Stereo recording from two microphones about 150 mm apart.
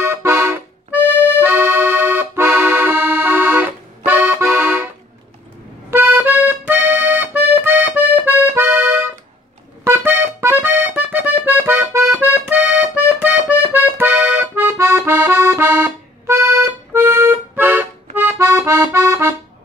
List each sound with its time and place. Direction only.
0.0 s accordion: 15° right (ahead or behind)
1.0 s accordion: 15° left (ahead or behind)
1.4 s accordion: 15° right (ahead or behind)
5.9 s accordion: 15° right (ahead or behind)